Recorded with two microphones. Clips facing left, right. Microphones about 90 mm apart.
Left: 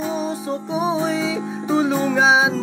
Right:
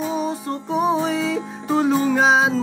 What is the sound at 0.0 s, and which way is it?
Music, 5° left (ahead or behind).